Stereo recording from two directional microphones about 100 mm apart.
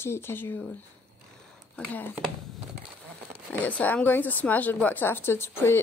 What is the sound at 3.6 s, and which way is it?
A woman's voice, 15° left (ahead or behind).